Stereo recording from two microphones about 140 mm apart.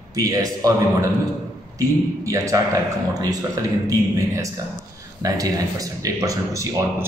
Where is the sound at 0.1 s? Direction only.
25° right (ahead or behind).